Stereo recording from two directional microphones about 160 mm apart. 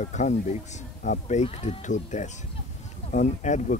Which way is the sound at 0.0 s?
50° left (ahead or behind).